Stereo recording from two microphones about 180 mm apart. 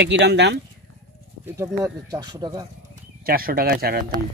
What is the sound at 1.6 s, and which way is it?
Speech, 20° right (ahead or behind).